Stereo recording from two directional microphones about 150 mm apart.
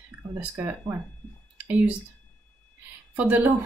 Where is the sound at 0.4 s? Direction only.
15° right (ahead or behind).